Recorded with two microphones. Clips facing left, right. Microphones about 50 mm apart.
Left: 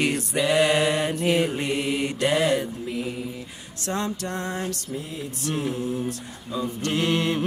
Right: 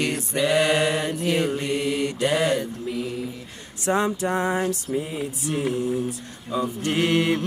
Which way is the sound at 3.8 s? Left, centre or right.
Centre.